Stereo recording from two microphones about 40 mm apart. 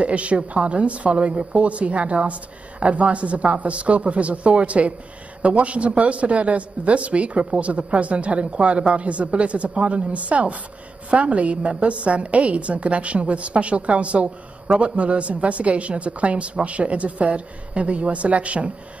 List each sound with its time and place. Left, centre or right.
0.0 s a woman's voice: right